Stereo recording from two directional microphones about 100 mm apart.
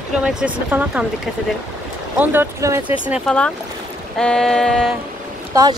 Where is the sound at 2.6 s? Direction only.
30° right (ahead or behind).